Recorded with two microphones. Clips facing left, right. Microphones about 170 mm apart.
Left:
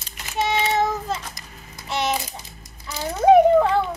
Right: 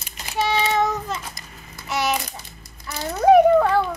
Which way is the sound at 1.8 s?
30° left (ahead or behind).